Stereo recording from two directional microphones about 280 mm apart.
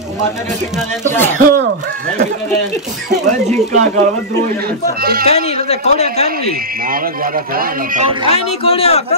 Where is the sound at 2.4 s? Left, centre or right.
Centre.